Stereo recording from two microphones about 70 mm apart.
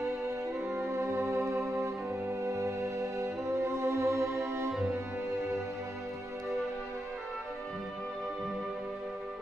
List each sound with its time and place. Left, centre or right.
0.7 s music: right